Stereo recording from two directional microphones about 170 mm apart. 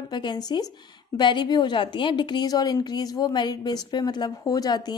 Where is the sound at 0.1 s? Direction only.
25° left (ahead or behind).